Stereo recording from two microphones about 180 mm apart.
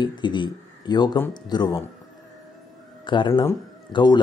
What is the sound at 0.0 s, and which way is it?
Speech, 25° left (ahead or behind).